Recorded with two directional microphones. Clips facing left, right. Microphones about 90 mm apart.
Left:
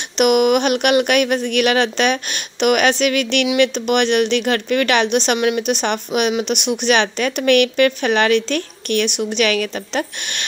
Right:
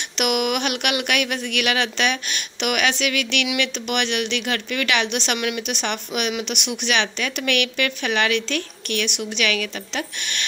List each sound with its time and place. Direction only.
0.2 s speech: 40° left (ahead or behind)